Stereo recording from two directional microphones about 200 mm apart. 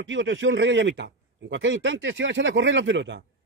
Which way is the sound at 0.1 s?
70° right (ahead or behind).